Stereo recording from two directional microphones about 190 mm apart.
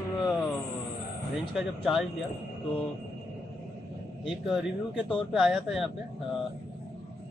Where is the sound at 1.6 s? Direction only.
Centre (ahead or behind).